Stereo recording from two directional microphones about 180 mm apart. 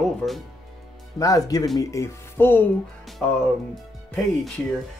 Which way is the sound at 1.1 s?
20° left (ahead or behind).